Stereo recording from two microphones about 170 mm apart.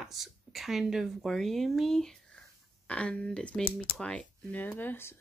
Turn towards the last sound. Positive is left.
turn(degrees=10)  # may be behind; listen again after turning